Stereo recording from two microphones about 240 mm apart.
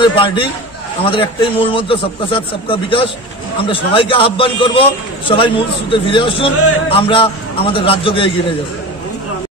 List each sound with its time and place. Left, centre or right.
0.0 s a man's voice: centre